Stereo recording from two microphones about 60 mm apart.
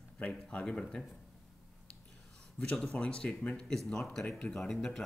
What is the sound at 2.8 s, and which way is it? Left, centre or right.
Speech, centre.